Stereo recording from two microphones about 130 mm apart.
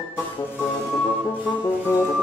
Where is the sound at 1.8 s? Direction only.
15° left (ahead or behind).